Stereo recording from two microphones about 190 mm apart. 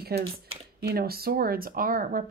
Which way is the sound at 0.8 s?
55° right (ahead or behind).